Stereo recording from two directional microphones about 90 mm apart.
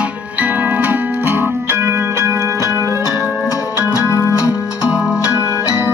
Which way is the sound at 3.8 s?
35° left (ahead or behind).